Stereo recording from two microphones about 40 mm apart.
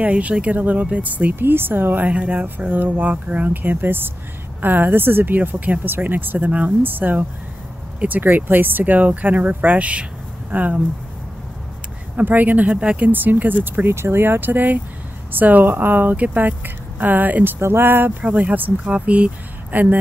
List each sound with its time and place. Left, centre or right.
0.0 s speech: right
1.3 s speech: right
2.0 s speech: right
12.2 s speech: right
13.8 s speech: right
17.6 s speech: right
18.2 s speech: right
19.7 s speech: right